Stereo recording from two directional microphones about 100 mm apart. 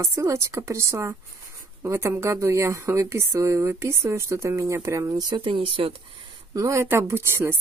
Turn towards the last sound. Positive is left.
turn(degrees=-25)  # may be behind; listen again after turning